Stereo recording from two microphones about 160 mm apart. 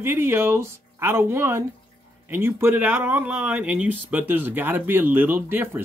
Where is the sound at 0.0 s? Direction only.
15° right (ahead or behind).